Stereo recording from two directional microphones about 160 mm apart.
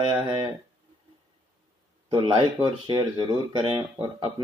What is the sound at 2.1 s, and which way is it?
Speech, 30° right (ahead or behind).